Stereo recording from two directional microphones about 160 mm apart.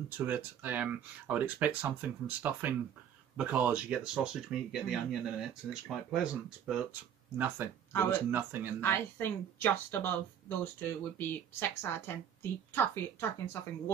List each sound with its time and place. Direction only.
0.2 s speech: 10° right (ahead or behind)
7.3 s speech: 10° right (ahead or behind)
7.9 s speech: 15° left (ahead or behind)
8.3 s speech: 10° right (ahead or behind)
8.8 s speech: 15° left (ahead or behind)